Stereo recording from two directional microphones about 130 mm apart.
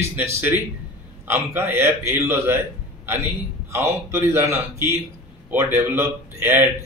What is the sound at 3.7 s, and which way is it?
A man's voice, 20° right (ahead or behind).